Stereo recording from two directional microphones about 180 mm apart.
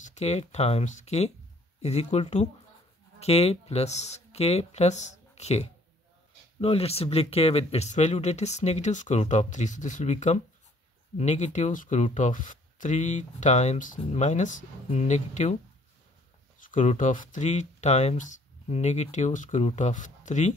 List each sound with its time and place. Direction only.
0.0 s speech: 40° left (ahead or behind)
16.5 s speech: 45° left (ahead or behind)